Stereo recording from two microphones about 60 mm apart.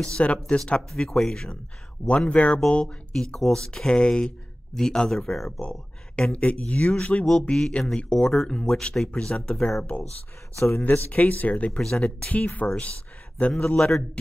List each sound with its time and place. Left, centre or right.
0.0 s speech: centre
2.0 s speech: centre
5.6 s speech: centre
10.8 s speech: left; by 14.0 s centre